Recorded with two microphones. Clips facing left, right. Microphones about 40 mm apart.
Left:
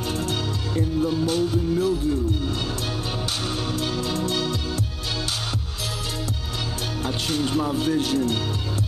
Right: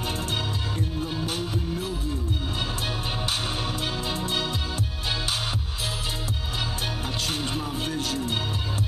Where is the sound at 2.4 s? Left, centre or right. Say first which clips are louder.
Left 2 dB; centre.